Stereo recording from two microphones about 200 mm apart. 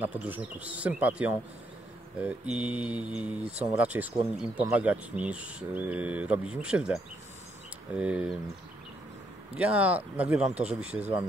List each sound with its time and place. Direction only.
0.0 s speech: 10° right (ahead or behind)
2.2 s mantra: 5° right (ahead or behind)
3.7 s speech: 10° right (ahead or behind)
6.5 s mantra: 5° right (ahead or behind)
9.5 s speech: 5° right (ahead or behind)
10.9 s speech: 30° right (ahead or behind)